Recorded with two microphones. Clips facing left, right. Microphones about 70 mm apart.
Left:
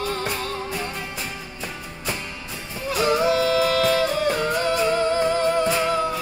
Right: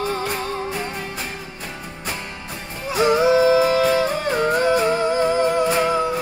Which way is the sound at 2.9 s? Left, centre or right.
Centre.